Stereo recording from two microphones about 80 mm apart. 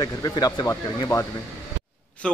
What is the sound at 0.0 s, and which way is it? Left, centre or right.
Speech, left.